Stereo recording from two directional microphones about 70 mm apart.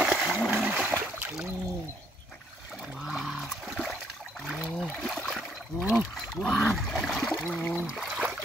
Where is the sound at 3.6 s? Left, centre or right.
Centre.